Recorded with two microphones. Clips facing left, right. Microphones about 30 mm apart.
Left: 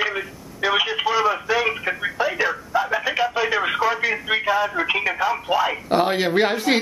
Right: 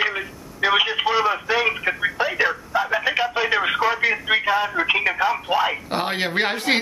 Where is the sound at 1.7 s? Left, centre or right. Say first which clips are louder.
Right 2 dB; centre.